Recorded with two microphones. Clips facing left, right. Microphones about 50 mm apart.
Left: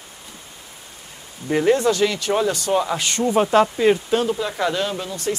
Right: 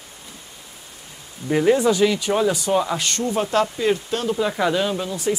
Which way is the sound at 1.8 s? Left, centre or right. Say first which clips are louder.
Right 1 dB; centre.